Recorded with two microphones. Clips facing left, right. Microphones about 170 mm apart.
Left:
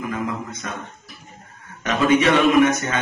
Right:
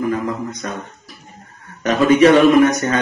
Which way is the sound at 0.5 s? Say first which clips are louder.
Right 4 dB; 40° right (ahead or behind).